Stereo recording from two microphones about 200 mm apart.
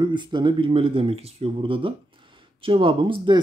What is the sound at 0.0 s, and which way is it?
Speech, 20° right (ahead or behind).